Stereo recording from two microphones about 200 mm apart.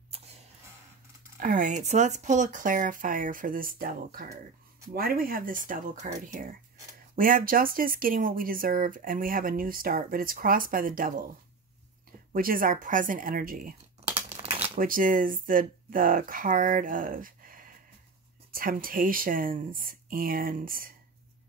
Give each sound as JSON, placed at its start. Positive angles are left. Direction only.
{"t": 1.4, "sound": "speech", "side_deg": -40}
{"t": 7.2, "sound": "speech", "side_deg": -45}
{"t": 12.3, "sound": "speech", "side_deg": -45}
{"t": 14.3, "sound": "shuffling cards", "side_deg": -30}
{"t": 14.8, "sound": "speech", "side_deg": -45}